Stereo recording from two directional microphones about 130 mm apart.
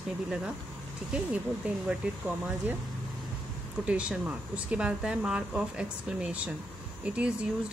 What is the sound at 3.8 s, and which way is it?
Speech, 10° right (ahead or behind).